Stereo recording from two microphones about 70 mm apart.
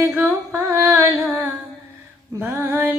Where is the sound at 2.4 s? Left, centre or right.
Right.